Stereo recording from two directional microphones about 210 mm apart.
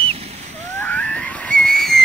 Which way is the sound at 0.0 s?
30° right (ahead or behind).